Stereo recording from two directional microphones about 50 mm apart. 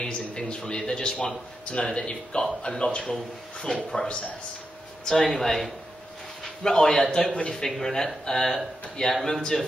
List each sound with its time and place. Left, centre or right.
0.0 s a man's voice: centre